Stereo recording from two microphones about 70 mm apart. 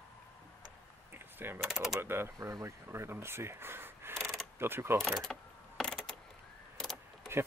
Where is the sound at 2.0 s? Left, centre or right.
Right.